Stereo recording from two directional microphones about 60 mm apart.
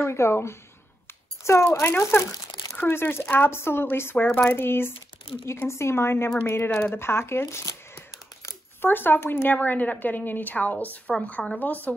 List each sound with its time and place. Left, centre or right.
0.0 s speech: left
1.8 s speech: left
8.8 s a woman's voice: left